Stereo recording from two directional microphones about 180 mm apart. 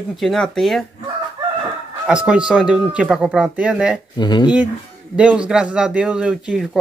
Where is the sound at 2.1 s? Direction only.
5° right (ahead or behind).